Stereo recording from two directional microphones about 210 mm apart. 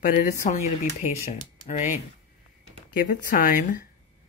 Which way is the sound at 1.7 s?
35° left (ahead or behind).